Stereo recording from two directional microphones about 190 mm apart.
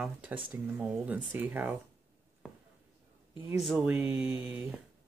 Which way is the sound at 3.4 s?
5° right (ahead or behind).